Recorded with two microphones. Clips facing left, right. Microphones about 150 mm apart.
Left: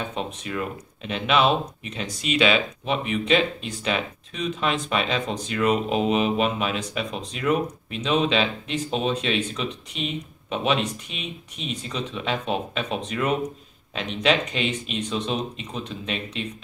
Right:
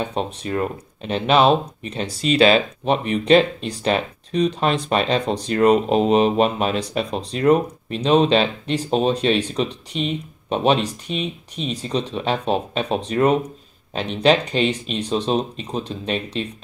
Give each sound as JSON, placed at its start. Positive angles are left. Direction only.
{"t": 0.1, "sound": "speech", "side_deg": -35}